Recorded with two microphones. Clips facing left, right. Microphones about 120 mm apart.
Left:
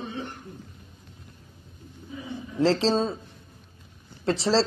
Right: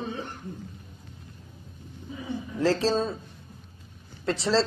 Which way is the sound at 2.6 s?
25° left (ahead or behind).